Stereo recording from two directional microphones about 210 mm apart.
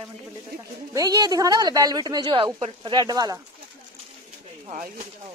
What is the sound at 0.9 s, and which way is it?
A woman's voice, 20° right (ahead or behind).